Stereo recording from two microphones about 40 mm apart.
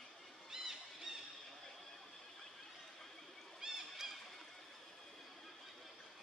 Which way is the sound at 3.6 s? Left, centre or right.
Centre.